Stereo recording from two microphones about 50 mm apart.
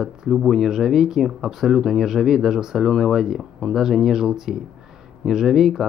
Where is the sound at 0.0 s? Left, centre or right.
Centre.